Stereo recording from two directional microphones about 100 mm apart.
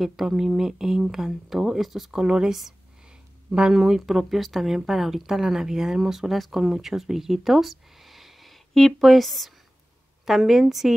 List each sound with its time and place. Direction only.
0.0 s speech: 5° right (ahead or behind)